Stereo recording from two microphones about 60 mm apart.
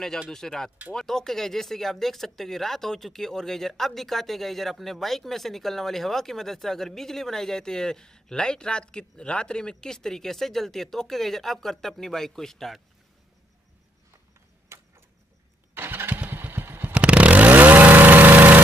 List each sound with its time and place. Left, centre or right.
0.3 s speech: centre
14.7 s vehicle: right
15.7 s vehicle: right
16.9 s chainsaw: centre